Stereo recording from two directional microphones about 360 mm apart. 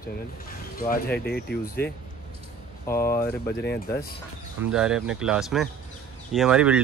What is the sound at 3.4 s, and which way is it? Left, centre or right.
Speech, left.